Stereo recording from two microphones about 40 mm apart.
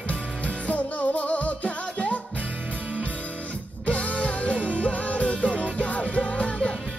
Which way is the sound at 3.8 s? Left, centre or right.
Left.